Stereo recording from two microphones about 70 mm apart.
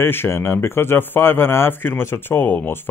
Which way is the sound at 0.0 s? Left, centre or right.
Left.